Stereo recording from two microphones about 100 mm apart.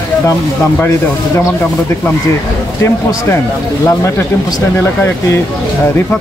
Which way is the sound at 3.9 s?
30° left (ahead or behind).